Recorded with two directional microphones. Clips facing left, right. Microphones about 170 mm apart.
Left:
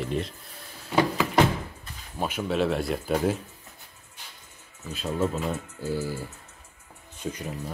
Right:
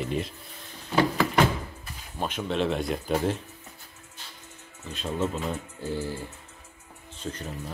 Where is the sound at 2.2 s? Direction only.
5° left (ahead or behind).